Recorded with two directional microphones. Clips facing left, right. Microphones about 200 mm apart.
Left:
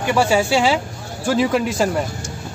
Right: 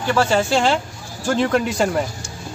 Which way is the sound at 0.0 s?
10° left (ahead or behind).